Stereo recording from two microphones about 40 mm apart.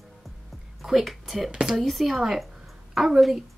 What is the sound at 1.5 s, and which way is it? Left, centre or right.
Speech, right.